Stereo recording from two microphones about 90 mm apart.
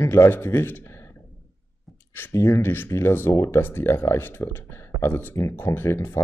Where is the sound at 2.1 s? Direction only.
25° left (ahead or behind).